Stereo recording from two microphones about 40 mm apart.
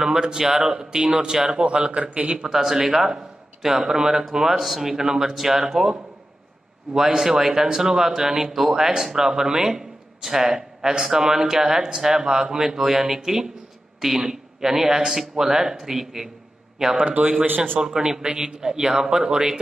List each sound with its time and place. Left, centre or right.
0.0 s speech: centre
1.9 s a man's voice: right
2.3 s speech: centre
7.2 s speech: centre
17.0 s a man's voice: right
17.7 s speech: centre